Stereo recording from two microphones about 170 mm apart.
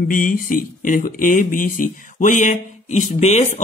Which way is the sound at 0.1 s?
50° left (ahead or behind).